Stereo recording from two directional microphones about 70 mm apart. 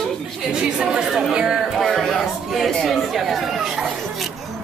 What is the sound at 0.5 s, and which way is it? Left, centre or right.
Speech, centre.